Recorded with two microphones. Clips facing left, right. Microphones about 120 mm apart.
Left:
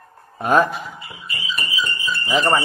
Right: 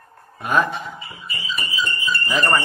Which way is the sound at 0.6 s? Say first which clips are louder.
Even; centre (ahead or behind).